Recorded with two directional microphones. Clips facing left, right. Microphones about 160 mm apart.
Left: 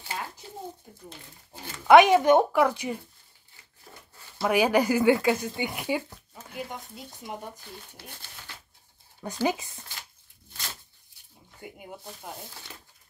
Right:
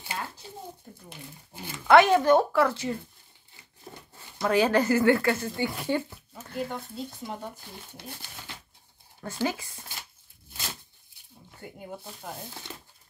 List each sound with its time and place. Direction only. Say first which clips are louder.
1.9 s speech: left 2 dB; 15° left (ahead or behind)
4.4 s speech: even; 10° left (ahead or behind)
9.2 s speech: left 2 dB; 15° left (ahead or behind)